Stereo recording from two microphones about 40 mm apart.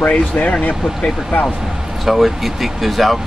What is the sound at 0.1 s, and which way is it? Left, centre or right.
Speech, left.